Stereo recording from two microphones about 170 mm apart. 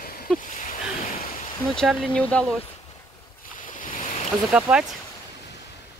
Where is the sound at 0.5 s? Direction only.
50° left (ahead or behind).